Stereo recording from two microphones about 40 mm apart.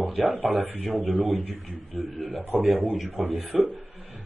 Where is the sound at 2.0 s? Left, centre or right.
Centre.